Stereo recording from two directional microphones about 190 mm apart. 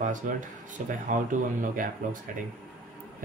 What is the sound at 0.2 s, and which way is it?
Speech, 45° right (ahead or behind).